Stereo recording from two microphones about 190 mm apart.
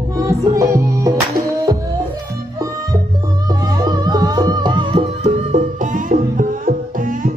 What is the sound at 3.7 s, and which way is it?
Music, 20° right (ahead or behind).